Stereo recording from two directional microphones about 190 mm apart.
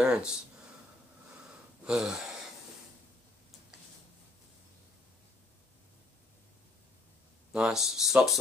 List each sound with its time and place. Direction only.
0.0 s speech: 5° right (ahead or behind)
1.9 s speech: centre (ahead or behind)
7.5 s speech: centre (ahead or behind)